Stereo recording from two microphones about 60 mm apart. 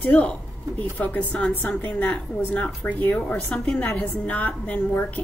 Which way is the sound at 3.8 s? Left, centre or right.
Left.